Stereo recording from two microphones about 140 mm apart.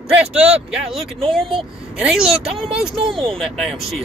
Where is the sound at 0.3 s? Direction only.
10° right (ahead or behind).